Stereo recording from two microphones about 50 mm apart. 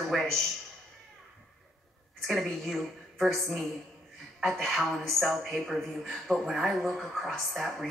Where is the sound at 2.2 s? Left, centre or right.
Centre.